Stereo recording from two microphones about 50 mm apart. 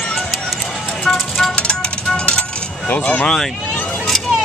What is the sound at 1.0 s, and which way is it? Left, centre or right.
Vehicle, centre.